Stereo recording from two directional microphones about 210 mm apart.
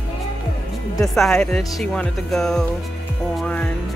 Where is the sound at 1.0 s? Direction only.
Centre (ahead or behind).